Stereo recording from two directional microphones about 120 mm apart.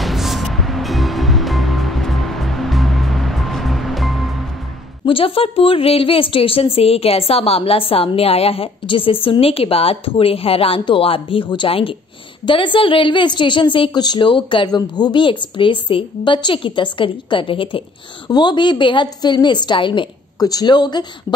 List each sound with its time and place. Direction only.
0.0 s music: centre (ahead or behind)
5.0 s a woman's voice: 50° left (ahead or behind)